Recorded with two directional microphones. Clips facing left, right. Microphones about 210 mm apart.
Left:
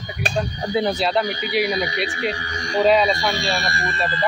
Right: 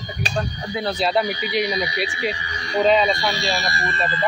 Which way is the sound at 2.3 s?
50° left (ahead or behind).